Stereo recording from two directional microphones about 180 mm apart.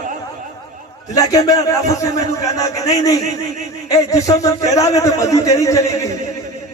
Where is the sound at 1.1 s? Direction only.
20° left (ahead or behind).